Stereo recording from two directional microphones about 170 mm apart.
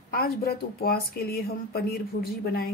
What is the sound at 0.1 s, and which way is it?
Speech, 60° left (ahead or behind).